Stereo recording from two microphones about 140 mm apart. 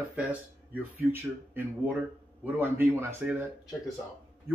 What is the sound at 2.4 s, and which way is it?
Speech, 15° right (ahead or behind).